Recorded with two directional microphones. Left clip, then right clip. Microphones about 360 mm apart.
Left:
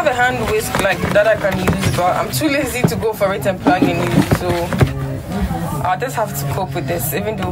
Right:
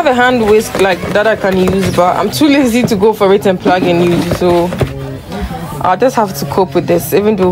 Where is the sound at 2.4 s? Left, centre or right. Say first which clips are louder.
Right 7 dB; centre.